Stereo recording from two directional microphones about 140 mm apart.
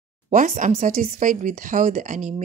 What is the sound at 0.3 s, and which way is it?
Speech, 70° right (ahead or behind).